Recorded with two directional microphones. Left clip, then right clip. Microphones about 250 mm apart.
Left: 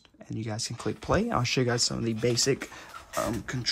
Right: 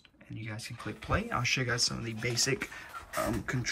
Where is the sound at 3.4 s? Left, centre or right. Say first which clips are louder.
Even; centre.